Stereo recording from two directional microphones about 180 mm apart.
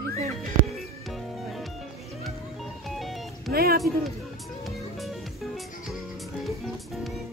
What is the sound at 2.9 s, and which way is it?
Music, centre (ahead or behind).